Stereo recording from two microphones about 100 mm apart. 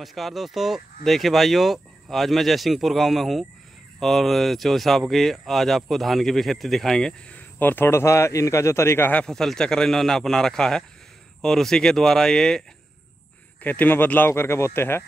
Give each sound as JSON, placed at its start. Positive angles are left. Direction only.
{"t": 0.0, "sound": "speech", "side_deg": 0}
{"t": 9.2, "sound": "speech", "side_deg": 5}
{"t": 13.6, "sound": "speech", "side_deg": 20}